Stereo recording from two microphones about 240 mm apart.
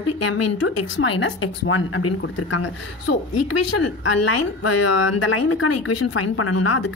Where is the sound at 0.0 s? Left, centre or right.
Left.